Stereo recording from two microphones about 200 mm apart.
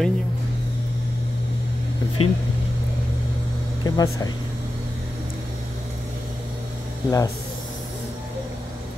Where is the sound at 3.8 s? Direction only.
20° left (ahead or behind).